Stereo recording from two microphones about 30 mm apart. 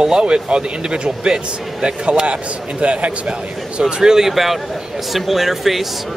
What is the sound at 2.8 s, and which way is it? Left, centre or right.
A man's voice, right.